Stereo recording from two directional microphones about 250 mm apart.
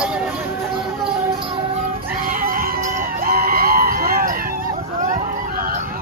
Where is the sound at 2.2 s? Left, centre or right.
Right.